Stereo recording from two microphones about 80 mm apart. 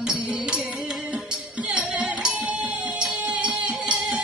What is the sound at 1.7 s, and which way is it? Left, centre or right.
Music, centre.